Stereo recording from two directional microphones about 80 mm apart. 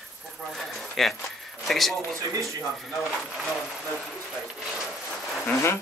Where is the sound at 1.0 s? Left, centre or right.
Centre.